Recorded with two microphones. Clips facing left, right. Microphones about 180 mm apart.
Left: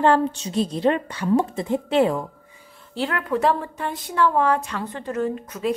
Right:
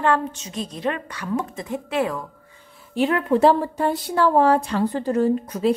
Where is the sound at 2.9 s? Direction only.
20° right (ahead or behind).